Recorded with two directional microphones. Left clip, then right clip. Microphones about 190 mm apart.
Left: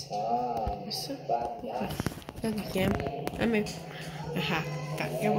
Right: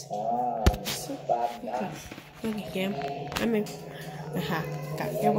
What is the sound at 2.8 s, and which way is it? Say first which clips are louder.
Speech: left 2 dB; 15° left (ahead or behind).